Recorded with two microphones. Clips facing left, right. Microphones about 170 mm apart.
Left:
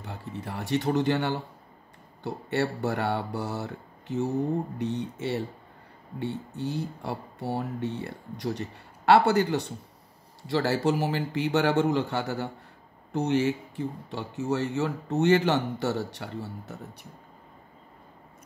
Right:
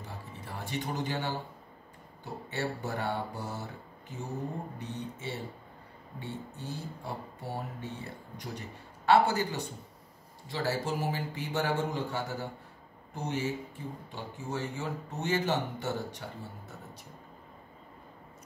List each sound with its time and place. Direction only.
0.0 s speech: 70° left (ahead or behind)
4.7 s speech: 70° left (ahead or behind)